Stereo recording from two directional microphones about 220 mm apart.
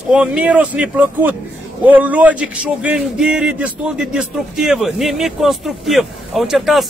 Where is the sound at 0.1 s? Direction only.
5° right (ahead or behind).